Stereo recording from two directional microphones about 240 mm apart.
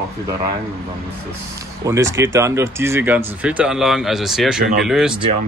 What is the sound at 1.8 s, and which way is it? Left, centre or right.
Speech, centre.